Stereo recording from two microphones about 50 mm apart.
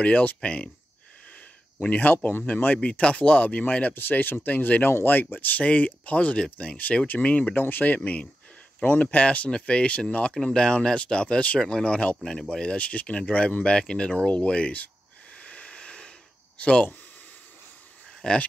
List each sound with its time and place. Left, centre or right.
0.0 s speech: left
1.8 s speech: left
2.8 s speech: left
3.9 s speech: left
4.8 s speech: left
5.3 s speech: left
7.5 s speech: left
10.3 s speech: centre
12.3 s speech: centre
15.3 s a sound: left
16.5 s speech: left
18.2 s speech: centre